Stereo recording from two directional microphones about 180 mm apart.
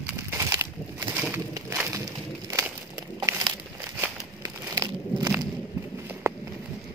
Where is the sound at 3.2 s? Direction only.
20° right (ahead or behind).